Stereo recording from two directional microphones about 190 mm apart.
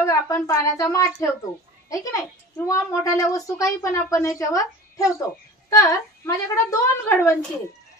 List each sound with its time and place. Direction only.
0.0 s speech: 15° left (ahead or behind)